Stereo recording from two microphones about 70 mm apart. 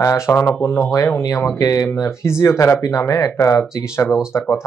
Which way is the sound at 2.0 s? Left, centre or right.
Left.